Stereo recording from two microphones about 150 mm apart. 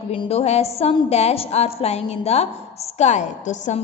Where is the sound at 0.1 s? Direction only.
40° left (ahead or behind).